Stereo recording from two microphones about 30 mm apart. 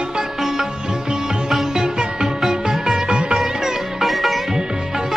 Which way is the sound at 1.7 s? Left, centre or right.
Right.